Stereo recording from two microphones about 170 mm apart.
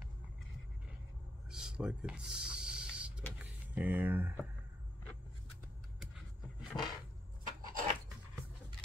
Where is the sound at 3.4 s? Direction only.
10° right (ahead or behind).